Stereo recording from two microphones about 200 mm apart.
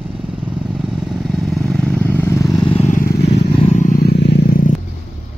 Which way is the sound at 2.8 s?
40° left (ahead or behind).